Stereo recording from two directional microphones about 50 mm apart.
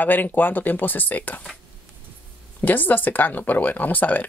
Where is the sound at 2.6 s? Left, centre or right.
Left.